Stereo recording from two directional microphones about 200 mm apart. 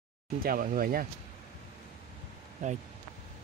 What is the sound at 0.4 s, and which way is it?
Speech, 45° right (ahead or behind).